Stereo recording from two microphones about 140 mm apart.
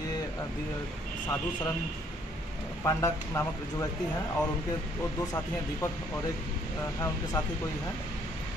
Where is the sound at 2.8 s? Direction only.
20° left (ahead or behind).